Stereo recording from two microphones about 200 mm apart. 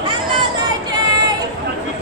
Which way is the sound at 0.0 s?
25° right (ahead or behind).